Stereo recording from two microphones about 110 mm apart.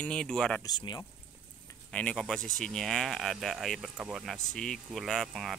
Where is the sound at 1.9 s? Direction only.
10° left (ahead or behind).